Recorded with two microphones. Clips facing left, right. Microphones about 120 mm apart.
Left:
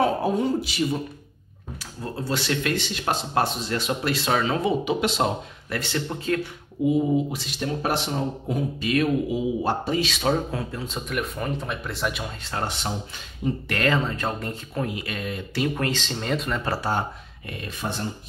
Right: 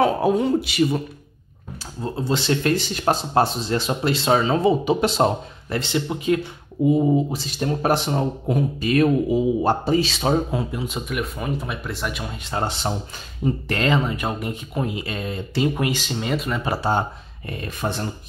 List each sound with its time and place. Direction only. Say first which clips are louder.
0.0 s a man's voice: right 4 dB; 75° right (ahead or behind)
2.1 s speech: right 4 dB; 25° right (ahead or behind)
5.8 s speech: right 4 dB; 15° right (ahead or behind)
6.8 s speech: right 4 dB; 45° right (ahead or behind)
7.2 s speech: right 4 dB; 35° right (ahead or behind)
10.5 s speech: right 4 dB; 15° right (ahead or behind); by 12.3 s centre (ahead or behind)
12.4 s speech: right 5 dB; 25° right (ahead or behind)
15.7 s speech: right 3 dB; 15° right (ahead or behind)
16.7 s speech: right 5 dB; 25° right (ahead or behind)
17.8 s speech: right 4 dB; 60° right (ahead or behind)